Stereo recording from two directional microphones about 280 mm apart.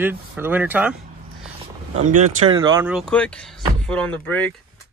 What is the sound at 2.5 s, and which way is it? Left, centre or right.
Speech, centre.